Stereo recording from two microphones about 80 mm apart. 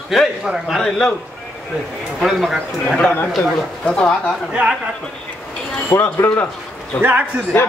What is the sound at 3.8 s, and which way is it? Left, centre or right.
Speech, centre.